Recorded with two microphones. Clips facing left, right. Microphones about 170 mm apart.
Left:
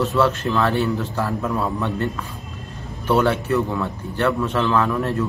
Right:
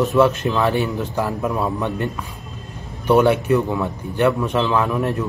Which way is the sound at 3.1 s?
15° right (ahead or behind).